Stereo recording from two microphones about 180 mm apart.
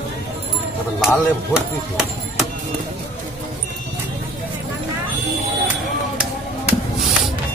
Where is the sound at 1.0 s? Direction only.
5° right (ahead or behind).